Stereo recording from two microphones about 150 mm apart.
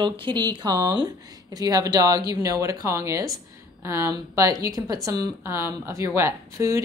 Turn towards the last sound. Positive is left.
turn(degrees=-20)  # may be behind; listen again after turning